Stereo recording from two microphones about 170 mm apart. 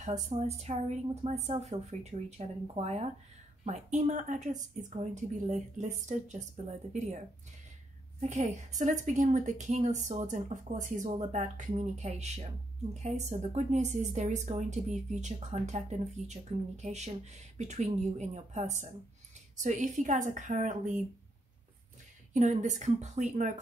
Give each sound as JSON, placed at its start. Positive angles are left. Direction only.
{"t": 0.3, "sound": "speech", "side_deg": -40}
{"t": 22.3, "sound": "speech", "side_deg": -45}